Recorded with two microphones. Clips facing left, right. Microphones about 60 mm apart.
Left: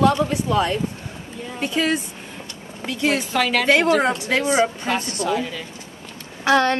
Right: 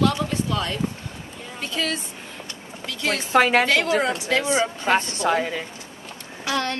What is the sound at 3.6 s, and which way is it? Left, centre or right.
Speech, left.